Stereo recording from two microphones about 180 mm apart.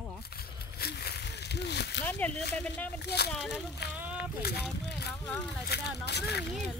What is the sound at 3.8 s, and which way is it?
Speech, 65° left (ahead or behind).